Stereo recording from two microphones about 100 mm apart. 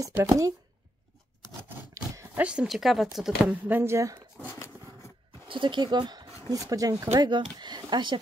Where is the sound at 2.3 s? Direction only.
10° right (ahead or behind).